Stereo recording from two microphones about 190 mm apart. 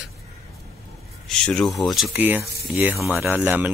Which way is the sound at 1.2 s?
Centre (ahead or behind).